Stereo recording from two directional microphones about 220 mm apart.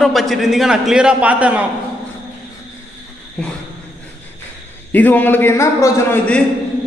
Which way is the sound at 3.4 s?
5° left (ahead or behind).